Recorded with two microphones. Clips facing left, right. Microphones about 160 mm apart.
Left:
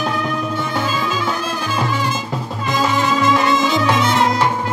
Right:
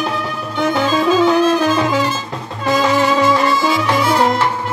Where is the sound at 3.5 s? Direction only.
15° left (ahead or behind).